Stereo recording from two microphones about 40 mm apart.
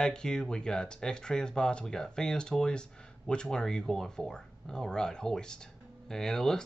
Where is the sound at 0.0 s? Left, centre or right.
Centre.